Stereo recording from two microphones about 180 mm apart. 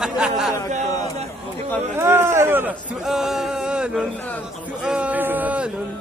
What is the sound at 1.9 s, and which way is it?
Speech, 15° right (ahead or behind).